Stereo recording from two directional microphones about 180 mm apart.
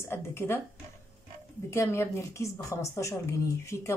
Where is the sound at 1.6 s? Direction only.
15° left (ahead or behind).